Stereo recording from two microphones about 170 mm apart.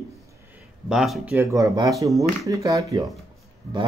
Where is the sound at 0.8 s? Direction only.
Centre (ahead or behind).